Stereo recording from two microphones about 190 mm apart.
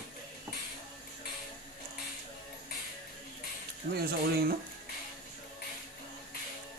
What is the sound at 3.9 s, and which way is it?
Speech, 55° right (ahead or behind).